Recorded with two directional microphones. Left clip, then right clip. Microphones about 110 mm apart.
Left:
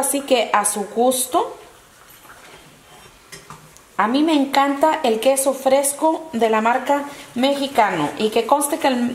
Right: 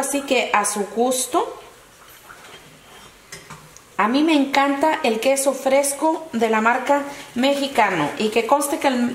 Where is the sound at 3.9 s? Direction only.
20° left (ahead or behind).